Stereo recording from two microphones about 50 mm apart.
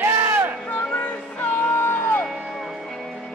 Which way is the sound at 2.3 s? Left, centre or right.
Centre.